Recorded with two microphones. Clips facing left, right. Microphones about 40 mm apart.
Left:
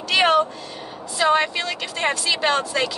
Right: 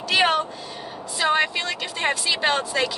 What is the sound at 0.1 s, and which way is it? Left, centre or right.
Cat, centre.